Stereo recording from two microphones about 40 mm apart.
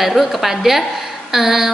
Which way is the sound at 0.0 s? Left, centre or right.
Centre.